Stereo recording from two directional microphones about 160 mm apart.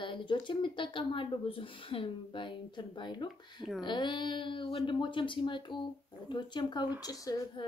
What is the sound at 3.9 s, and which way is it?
Speech, 30° left (ahead or behind).